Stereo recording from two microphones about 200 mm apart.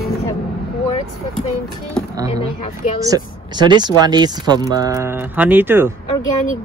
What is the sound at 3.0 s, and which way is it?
Speech, 20° right (ahead or behind).